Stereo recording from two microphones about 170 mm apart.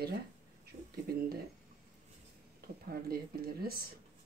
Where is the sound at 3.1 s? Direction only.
60° right (ahead or behind).